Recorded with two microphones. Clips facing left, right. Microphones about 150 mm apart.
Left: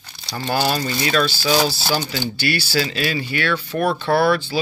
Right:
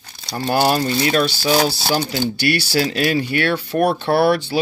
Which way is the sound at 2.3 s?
65° right (ahead or behind).